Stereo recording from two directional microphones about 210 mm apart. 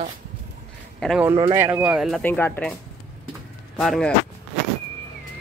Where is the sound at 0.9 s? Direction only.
Centre (ahead or behind).